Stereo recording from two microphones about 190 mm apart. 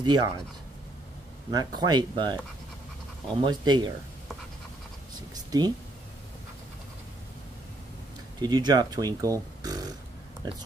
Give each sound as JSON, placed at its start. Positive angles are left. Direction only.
{"t": 0.0, "sound": "speech", "side_deg": -25}
{"t": 1.5, "sound": "speech", "side_deg": -20}
{"t": 3.4, "sound": "speech", "side_deg": -25}
{"t": 5.3, "sound": "a sound", "side_deg": -20}
{"t": 8.4, "sound": "speech", "side_deg": -20}